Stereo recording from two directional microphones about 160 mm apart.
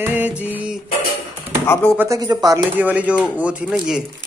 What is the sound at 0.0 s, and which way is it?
Music, 10° right (ahead or behind).